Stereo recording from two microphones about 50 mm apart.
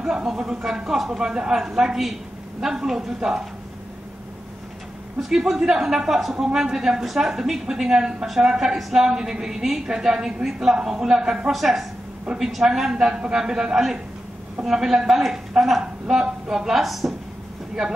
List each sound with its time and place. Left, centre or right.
0.0 s a woman's voice: centre
5.3 s a woman's voice: centre